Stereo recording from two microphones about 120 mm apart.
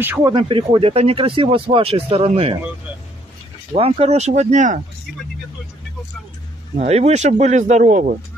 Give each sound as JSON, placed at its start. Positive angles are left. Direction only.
{"t": 0.2, "sound": "speech", "side_deg": -40}
{"t": 3.7, "sound": "speech", "side_deg": -50}
{"t": 6.8, "sound": "speech", "side_deg": -65}